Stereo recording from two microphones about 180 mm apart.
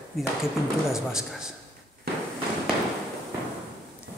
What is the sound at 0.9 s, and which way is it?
Speech, 5° right (ahead or behind).